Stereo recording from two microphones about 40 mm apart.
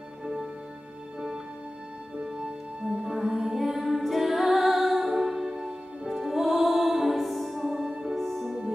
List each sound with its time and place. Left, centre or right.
3.0 s music: centre
7.7 s music: centre
8.1 s music: centre